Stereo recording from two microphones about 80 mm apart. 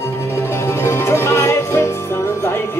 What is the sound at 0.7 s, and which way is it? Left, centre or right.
Music, left.